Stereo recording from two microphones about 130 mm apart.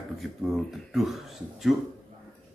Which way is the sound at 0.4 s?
Centre (ahead or behind).